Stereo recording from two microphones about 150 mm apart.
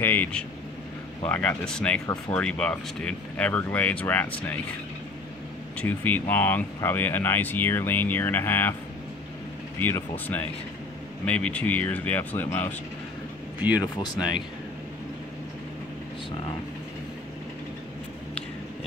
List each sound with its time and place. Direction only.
0.0 s speech: 10° left (ahead or behind)
5.8 s speech: 10° left (ahead or behind)
9.8 s speech: 15° left (ahead or behind)
13.7 s speech: 25° left (ahead or behind)